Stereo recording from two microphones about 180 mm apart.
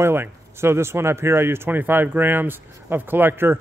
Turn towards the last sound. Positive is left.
turn(degrees=-10)  # may be behind; listen again after turning